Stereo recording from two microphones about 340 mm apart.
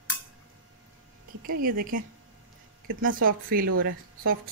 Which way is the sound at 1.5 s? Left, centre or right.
Right.